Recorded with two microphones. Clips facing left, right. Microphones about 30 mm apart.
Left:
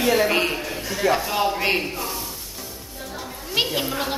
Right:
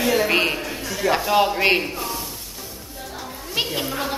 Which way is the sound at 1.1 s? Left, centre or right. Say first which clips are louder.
Right 8 dB; centre.